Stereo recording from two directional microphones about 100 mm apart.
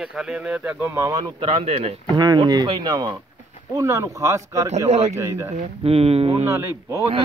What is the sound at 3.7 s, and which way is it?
Speech, 35° right (ahead or behind).